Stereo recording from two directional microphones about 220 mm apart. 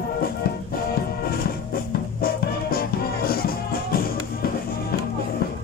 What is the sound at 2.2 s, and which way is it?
Music, 40° left (ahead or behind).